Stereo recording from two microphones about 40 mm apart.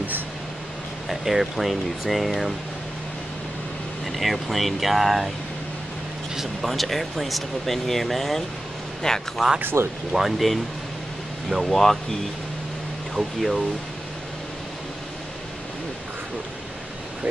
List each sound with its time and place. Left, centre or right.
1.0 s speech: centre
4.0 s speech: centre
6.7 s speech: centre
9.6 s speech: right
10.1 s speech: centre